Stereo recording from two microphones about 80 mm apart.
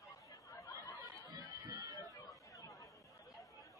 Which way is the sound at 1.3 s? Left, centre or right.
Right.